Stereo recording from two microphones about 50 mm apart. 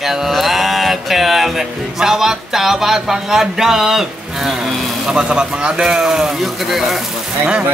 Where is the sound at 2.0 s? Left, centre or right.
Centre.